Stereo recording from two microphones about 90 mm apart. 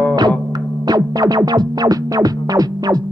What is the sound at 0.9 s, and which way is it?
Music, 45° right (ahead or behind).